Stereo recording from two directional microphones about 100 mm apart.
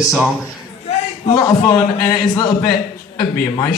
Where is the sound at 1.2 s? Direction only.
40° left (ahead or behind).